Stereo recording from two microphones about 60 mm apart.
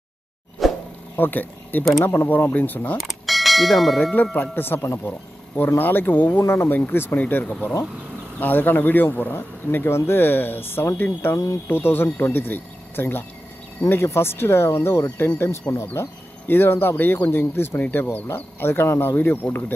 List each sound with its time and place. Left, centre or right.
0.6 s a sound: centre
1.1 s speech: left
3.0 s bell: centre
4.1 s speech: left
4.6 s speech: left